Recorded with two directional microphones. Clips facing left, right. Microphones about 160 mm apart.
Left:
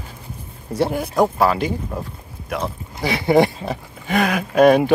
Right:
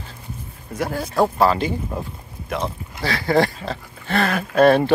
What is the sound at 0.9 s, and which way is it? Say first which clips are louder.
Speech: right 2 dB; 15° left (ahead or behind).